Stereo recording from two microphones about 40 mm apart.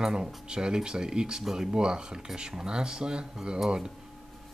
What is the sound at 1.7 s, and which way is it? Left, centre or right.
Speech, right.